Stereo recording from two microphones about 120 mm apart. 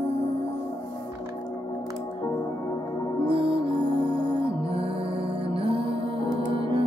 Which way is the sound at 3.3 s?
45° right (ahead or behind).